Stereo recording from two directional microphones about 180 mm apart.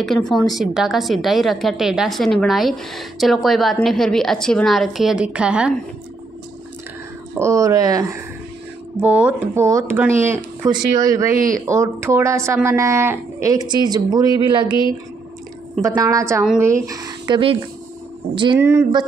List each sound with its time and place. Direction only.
0.0 s a woman's voice: centre (ahead or behind)
7.3 s speech: 15° right (ahead or behind)
8.9 s speech: 10° right (ahead or behind); by 14.8 s 25° right (ahead or behind)
15.8 s speech: 20° right (ahead or behind)
18.6 s speech: 15° right (ahead or behind)